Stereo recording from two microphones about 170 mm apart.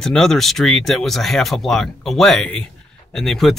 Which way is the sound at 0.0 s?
5° left (ahead or behind).